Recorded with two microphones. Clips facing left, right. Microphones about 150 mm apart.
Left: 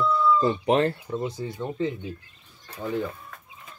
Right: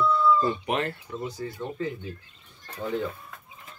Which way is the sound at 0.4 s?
30° left (ahead or behind).